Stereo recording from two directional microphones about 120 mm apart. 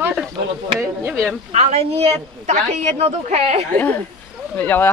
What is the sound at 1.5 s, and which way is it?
A woman's voice, 60° right (ahead or behind).